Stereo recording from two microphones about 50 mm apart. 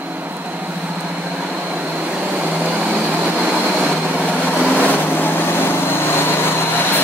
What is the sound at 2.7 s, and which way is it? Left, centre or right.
Vehicle, right.